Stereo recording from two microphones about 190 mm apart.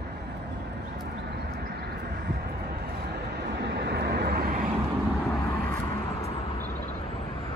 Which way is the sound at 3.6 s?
65° right (ahead or behind).